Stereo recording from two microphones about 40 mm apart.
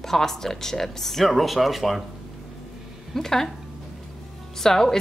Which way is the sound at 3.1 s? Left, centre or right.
Centre.